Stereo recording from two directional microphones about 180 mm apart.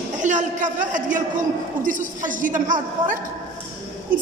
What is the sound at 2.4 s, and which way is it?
Speech, 45° right (ahead or behind).